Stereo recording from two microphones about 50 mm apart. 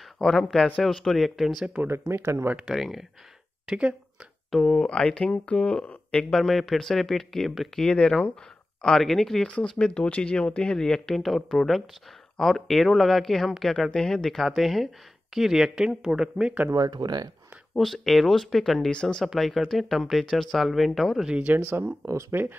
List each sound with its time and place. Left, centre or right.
0.2 s speech: centre
1.9 s speech: right
2.6 s speech: centre
3.6 s speech: right
4.6 s speech: centre
6.3 s speech: centre
7.8 s speech: centre
17.7 s speech: centre
18.9 s speech: centre
19.2 s speech: centre
21.5 s speech: right
22.3 s speech: right